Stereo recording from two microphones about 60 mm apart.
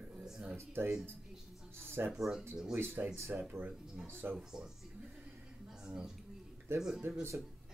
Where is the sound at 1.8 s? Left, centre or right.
Right.